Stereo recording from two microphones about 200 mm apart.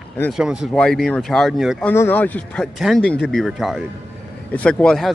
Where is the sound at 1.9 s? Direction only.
10° left (ahead or behind).